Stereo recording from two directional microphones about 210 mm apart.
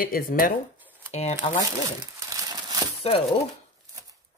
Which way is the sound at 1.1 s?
30° left (ahead or behind).